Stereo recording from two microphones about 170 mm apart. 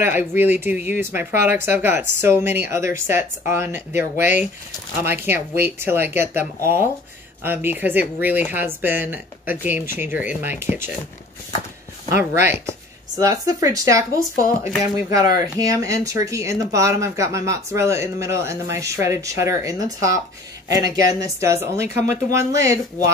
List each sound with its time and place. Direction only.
0.0 s speech: 10° right (ahead or behind)
13.1 s speech: 20° right (ahead or behind)
21.9 s speech: 45° left (ahead or behind)
22.3 s speech: 15° right (ahead or behind)